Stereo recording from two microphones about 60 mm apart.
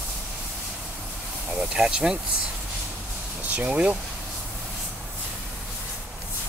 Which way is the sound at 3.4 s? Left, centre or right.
Right.